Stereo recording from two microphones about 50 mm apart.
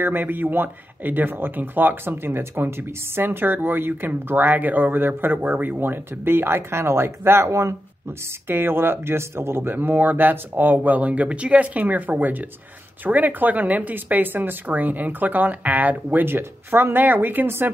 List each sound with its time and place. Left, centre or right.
0.0 s speech: right
8.5 s speech: right